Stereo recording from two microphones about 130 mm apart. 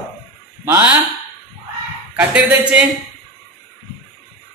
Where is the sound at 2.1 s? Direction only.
10° right (ahead or behind).